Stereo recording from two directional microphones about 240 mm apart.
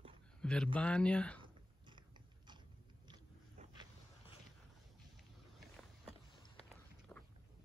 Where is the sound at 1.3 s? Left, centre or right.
Centre.